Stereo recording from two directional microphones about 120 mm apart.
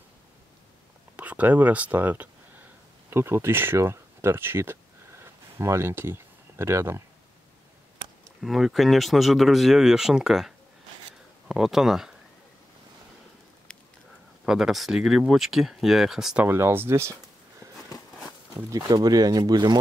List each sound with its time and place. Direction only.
1.1 s speech: 15° right (ahead or behind)
5.2 s a sound: 20° right (ahead or behind)
8.4 s speech: centre (ahead or behind)
14.4 s speech: 5° right (ahead or behind)
16.4 s speech: 20° right (ahead or behind)
18.7 s speech: 30° right (ahead or behind)